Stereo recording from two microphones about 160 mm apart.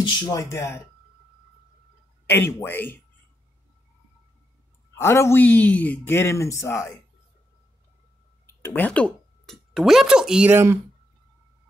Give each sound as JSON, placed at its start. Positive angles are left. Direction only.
{"t": 0.0, "sound": "speech", "side_deg": 25}
{"t": 2.2, "sound": "speech", "side_deg": 15}
{"t": 4.9, "sound": "speech", "side_deg": 15}
{"t": 8.5, "sound": "speech", "side_deg": 15}